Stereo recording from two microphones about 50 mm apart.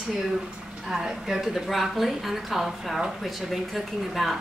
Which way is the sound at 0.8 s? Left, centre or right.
Centre.